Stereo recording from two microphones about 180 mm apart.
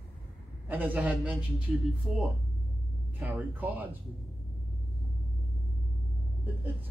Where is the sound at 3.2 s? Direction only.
10° right (ahead or behind).